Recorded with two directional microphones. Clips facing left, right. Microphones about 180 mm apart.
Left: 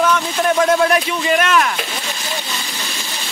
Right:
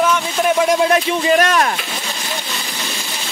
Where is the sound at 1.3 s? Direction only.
40° right (ahead or behind).